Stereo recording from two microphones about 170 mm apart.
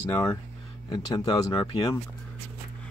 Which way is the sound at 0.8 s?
20° left (ahead or behind).